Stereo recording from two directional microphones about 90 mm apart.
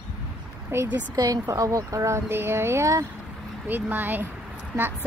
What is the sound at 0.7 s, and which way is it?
Speech, 30° right (ahead or behind).